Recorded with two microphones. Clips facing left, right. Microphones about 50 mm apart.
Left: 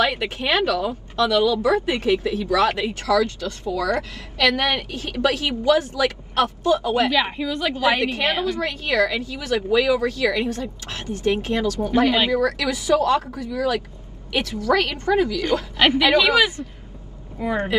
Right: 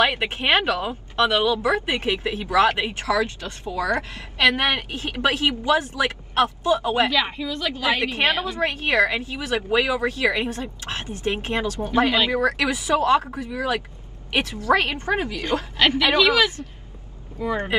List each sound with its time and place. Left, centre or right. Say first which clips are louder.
0.0 s speech: right 1 dB; right
7.1 s a woman's voice: left 2 dB; centre
8.2 s speech: even; right
16.3 s a woman's voice: left 2 dB; left